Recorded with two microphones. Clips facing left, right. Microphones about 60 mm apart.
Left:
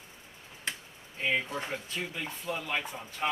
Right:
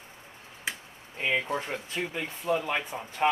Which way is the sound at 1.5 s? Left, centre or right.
Right.